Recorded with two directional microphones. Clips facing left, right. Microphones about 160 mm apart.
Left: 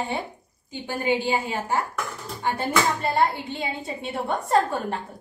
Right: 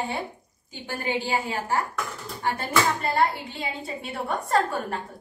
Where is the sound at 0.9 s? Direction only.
20° left (ahead or behind).